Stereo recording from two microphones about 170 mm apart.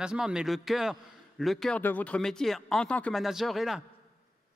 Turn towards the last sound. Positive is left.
turn(degrees=0)  # may be behind; listen again after turning